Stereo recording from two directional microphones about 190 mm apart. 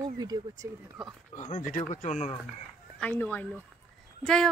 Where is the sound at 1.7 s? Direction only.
40° left (ahead or behind).